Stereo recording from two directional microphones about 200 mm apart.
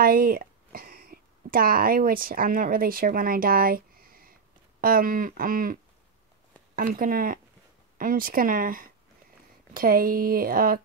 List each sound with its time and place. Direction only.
0.0 s speech: 50° right (ahead or behind)